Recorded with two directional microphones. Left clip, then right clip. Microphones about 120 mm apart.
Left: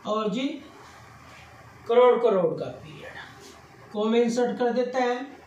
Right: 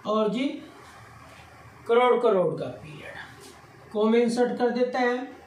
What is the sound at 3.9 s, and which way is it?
A woman's voice, 35° right (ahead or behind).